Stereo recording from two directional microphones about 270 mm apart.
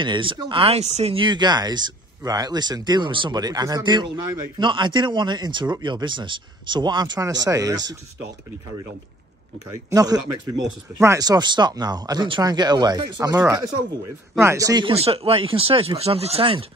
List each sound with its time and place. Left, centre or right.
0.0 s speech: centre
9.8 s speech: centre